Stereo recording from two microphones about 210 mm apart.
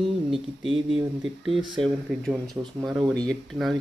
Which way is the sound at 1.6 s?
Centre (ahead or behind).